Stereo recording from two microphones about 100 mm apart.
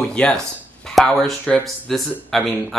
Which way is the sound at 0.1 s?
10° left (ahead or behind).